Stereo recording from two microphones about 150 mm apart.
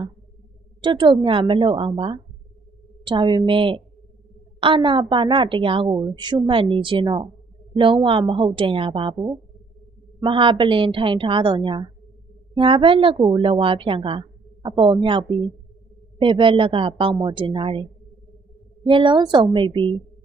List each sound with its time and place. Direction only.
0.8 s a woman's voice: 35° right (ahead or behind)
10.2 s a woman's voice: 35° right (ahead or behind)
18.9 s a woman's voice: 35° right (ahead or behind)